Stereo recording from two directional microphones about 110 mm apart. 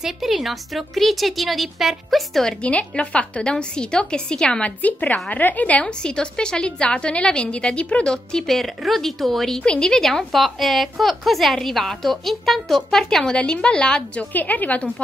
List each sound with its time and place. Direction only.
0.0 s a woman's voice: centre (ahead or behind); by 14.9 s 15° left (ahead or behind)